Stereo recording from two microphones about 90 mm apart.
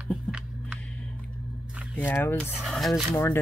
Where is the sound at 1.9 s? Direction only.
25° left (ahead or behind).